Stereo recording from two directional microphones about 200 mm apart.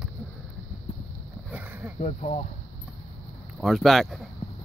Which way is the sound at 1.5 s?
10° right (ahead or behind).